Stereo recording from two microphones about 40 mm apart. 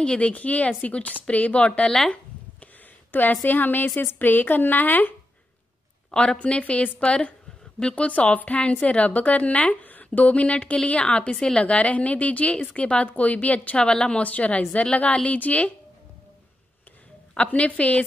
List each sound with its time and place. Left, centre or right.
0.0 s speech: left
0.3 s a woman's voice: left
1.9 s speech: centre
3.1 s a woman's voice: left
6.1 s a woman's voice: left
17.3 s a woman's voice: left